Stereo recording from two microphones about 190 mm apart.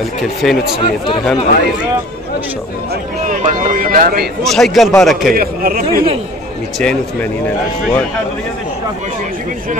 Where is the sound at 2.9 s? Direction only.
45° right (ahead or behind).